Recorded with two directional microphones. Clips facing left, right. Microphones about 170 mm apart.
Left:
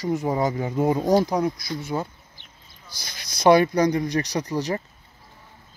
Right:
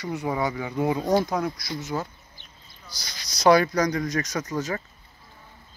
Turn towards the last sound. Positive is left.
turn(degrees=35)  # may be behind; listen again after turning